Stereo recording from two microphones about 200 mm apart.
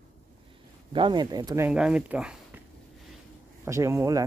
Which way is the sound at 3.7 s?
15° right (ahead or behind).